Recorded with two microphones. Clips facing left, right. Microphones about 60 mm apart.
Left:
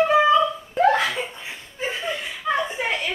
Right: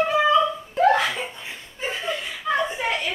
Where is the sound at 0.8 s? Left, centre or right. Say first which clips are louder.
Right 1 dB; centre.